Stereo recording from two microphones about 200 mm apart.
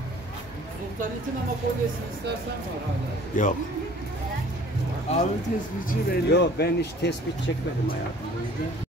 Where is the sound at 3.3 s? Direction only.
40° left (ahead or behind).